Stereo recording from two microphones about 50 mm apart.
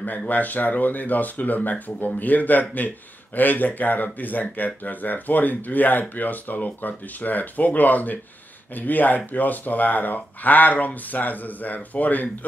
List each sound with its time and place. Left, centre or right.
0.3 s speech: left